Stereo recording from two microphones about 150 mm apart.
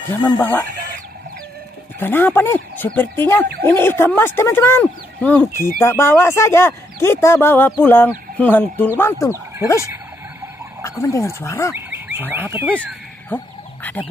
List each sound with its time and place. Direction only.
0.1 s speech: 10° left (ahead or behind)
2.0 s speech: 15° left (ahead or behind)
10.8 s speech: 20° left (ahead or behind)
11.7 s speech: 15° right (ahead or behind)
13.3 s speech: 15° left (ahead or behind)